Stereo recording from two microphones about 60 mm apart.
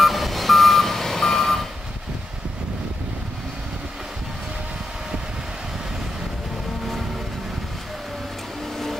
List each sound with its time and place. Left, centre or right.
0.0 s reversing beeps: centre